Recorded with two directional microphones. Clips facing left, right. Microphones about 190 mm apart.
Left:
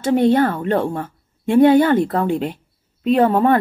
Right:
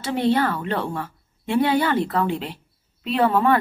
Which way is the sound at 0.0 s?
50° left (ahead or behind).